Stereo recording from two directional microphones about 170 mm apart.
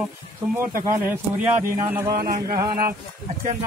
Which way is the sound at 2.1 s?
60° right (ahead or behind).